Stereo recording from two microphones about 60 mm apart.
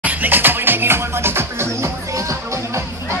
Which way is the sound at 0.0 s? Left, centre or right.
Right.